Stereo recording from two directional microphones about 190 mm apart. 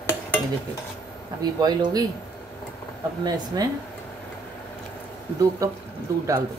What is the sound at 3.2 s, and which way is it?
Speech, 20° right (ahead or behind).